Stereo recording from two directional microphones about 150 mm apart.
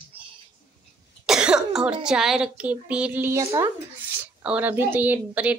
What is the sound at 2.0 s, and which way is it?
A woman's voice, 5° right (ahead or behind).